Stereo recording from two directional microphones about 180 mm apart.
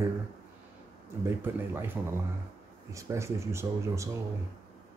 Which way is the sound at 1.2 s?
15° right (ahead or behind).